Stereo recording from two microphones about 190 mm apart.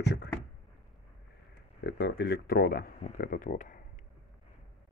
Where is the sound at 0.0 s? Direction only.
60° left (ahead or behind).